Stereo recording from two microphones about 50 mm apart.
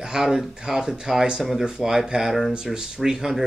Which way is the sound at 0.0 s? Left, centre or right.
Centre.